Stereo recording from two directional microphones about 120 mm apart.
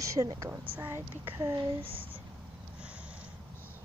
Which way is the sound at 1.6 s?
50° right (ahead or behind).